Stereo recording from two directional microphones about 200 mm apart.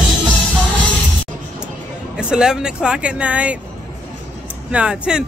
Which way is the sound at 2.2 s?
5° right (ahead or behind).